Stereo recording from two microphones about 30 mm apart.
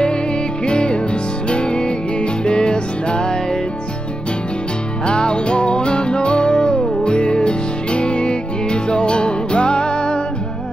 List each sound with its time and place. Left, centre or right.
0.7 s music: left
5.0 s music: left